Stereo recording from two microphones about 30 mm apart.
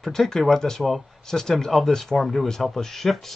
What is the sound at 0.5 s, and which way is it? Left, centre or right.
Speech, centre.